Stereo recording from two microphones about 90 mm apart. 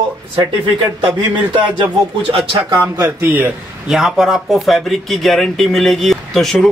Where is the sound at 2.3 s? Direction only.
90° right.